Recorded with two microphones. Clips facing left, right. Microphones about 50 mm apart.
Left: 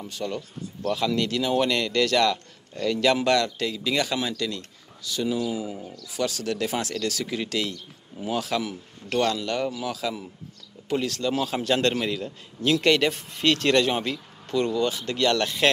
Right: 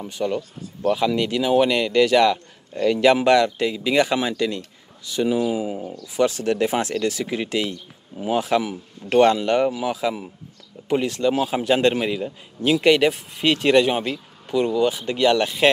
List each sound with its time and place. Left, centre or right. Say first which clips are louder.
0.0 s a man's voice: right 6 dB; centre